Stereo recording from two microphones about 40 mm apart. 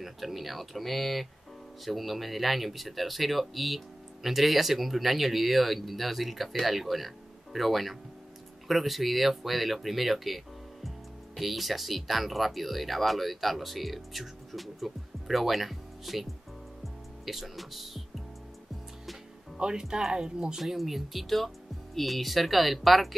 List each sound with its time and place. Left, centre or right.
0.0 s speech: centre
16.8 s music: centre
19.5 s speech: centre
20.6 s speech: centre